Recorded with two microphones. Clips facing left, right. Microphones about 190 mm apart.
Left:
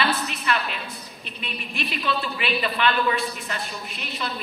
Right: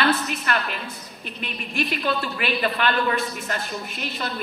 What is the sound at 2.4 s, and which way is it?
A man's voice, 50° right (ahead or behind).